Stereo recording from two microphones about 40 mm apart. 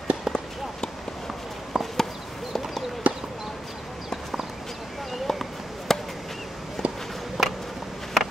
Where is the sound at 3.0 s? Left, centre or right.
Right.